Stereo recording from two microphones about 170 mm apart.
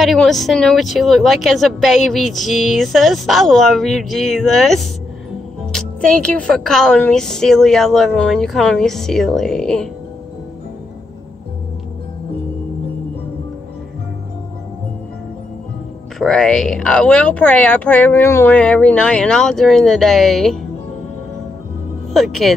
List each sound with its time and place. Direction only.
0.0 s a woman's voice: centre (ahead or behind)
16.2 s a woman's voice: centre (ahead or behind)
22.1 s a woman's voice: centre (ahead or behind)